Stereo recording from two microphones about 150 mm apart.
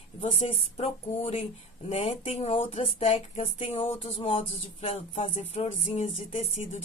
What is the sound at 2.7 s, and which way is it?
Speech, 45° left (ahead or behind).